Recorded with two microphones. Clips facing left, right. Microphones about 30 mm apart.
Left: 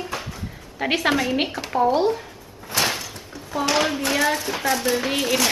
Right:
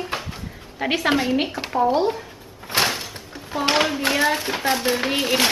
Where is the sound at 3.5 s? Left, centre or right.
Right.